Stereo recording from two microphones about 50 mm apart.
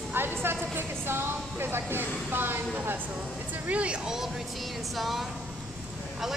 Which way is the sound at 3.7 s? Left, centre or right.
Right.